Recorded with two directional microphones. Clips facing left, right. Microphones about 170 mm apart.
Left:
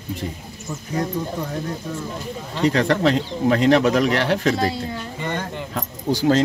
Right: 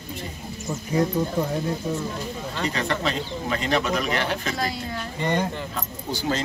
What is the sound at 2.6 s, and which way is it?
Speech, 80° left.